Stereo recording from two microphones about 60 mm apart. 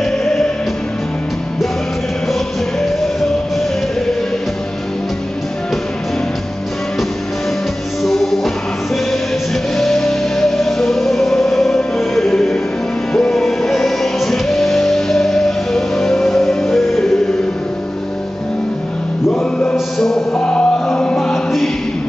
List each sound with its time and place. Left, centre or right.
0.0 s music: centre
8.0 s music: centre
9.8 s music: centre
19.3 s chant: centre
20.3 s music: centre
21.2 s music: centre